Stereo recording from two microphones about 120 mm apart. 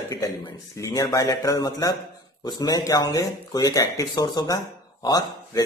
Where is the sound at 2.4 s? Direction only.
35° left (ahead or behind).